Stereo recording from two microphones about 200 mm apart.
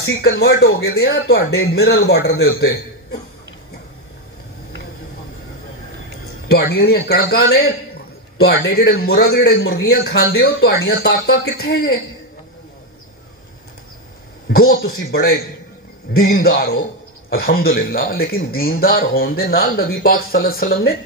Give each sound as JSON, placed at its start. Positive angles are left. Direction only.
{"t": 0.0, "sound": "speech", "side_deg": 60}
{"t": 6.5, "sound": "a man's voice", "side_deg": 55}
{"t": 14.5, "sound": "a man's voice", "side_deg": 50}